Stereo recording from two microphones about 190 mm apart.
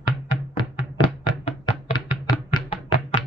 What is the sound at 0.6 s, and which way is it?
Chopping, 25° left (ahead or behind).